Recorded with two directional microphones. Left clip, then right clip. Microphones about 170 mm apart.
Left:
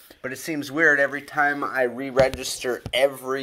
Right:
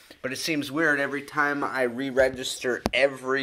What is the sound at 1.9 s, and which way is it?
Speech, 30° left (ahead or behind).